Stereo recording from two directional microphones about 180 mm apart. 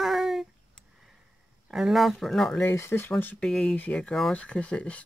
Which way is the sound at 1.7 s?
Centre (ahead or behind).